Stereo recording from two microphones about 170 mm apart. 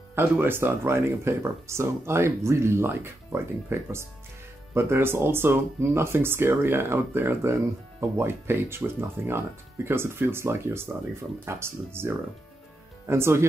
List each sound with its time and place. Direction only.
0.1 s speech: 15° right (ahead or behind)